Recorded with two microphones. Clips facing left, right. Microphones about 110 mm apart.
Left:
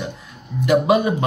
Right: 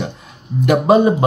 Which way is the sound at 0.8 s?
30° right (ahead or behind).